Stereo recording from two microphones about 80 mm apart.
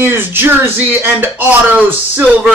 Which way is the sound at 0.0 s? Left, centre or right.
Right.